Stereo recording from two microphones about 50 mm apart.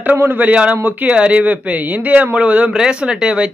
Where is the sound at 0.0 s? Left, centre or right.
Right.